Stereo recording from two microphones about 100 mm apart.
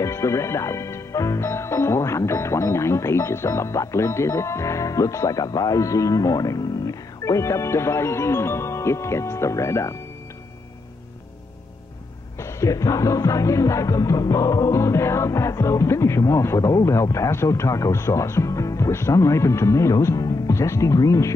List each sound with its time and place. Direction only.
0.0 s speech: 30° left (ahead or behind)
12.4 s music: 30° left (ahead or behind)